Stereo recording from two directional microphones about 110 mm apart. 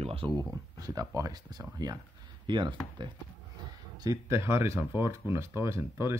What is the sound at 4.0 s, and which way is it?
Speech, 25° right (ahead or behind).